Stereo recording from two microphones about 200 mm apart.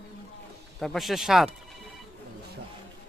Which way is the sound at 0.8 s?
Centre (ahead or behind).